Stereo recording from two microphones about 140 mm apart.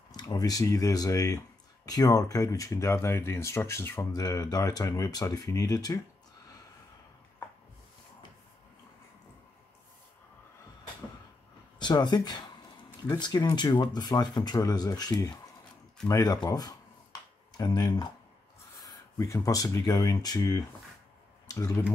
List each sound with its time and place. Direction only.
0.1 s speech: 30° left (ahead or behind)
11.8 s speech: 30° left (ahead or behind)